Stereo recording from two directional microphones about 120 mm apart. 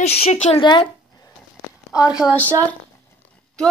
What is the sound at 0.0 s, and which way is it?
Speech, 60° left (ahead or behind).